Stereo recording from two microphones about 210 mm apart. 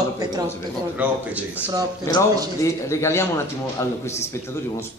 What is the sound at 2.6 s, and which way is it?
Speech, 15° left (ahead or behind).